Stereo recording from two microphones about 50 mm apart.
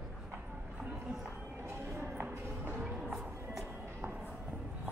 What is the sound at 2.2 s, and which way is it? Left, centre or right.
Music, right.